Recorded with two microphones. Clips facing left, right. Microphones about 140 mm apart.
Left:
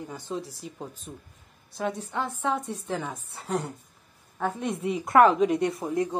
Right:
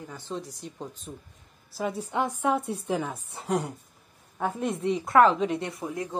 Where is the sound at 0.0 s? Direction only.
15° left (ahead or behind).